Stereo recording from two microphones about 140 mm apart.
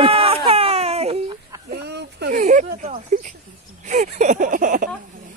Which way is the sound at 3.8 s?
60° right (ahead or behind).